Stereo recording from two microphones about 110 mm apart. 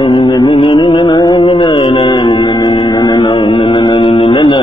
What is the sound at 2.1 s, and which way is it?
Music, 45° left (ahead or behind).